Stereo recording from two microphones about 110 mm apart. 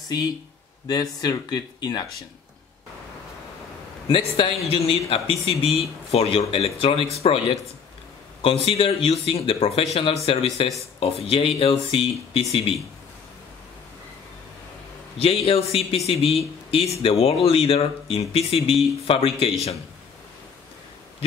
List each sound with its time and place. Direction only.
0.8 s speech: 35° left (ahead or behind)
4.1 s speech: 55° left (ahead or behind)
15.2 s speech: 60° left (ahead or behind)